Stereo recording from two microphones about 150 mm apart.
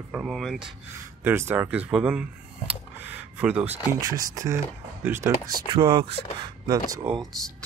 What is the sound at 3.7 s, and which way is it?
Speech, 25° right (ahead or behind).